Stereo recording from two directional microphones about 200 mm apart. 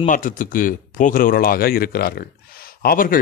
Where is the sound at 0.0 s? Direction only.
40° left (ahead or behind).